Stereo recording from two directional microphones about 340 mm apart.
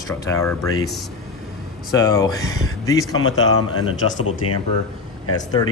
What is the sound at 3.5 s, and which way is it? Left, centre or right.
Speech, left.